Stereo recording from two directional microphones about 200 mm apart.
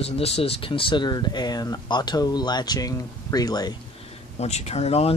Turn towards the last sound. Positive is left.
turn(degrees=30)  # may be behind; listen again after turning